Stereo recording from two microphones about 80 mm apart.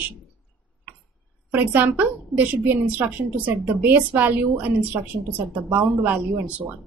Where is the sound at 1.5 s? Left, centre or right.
Right.